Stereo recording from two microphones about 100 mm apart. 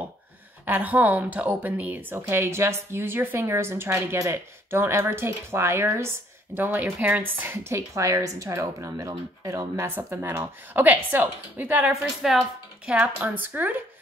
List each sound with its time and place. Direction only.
0.7 s a woman's voice: 15° right (ahead or behind)
11.9 s speech: 5° right (ahead or behind)